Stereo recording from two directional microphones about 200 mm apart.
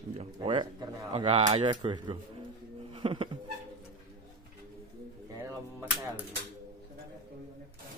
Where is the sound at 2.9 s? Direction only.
25° right (ahead or behind).